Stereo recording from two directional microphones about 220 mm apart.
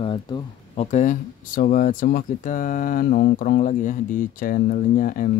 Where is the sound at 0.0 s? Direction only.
25° left (ahead or behind).